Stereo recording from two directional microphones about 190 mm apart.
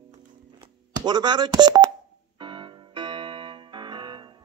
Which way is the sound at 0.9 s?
20° right (ahead or behind).